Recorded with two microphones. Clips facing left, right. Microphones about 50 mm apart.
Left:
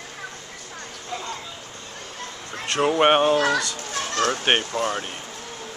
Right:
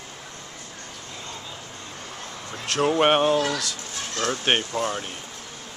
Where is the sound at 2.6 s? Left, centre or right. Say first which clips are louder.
Left 2 dB; centre.